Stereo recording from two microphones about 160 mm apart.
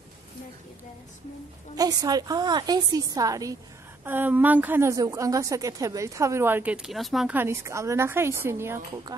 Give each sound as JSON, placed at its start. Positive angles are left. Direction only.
{"t": 1.8, "sound": "a woman's voice", "side_deg": -25}
{"t": 7.3, "sound": "a woman's voice", "side_deg": -15}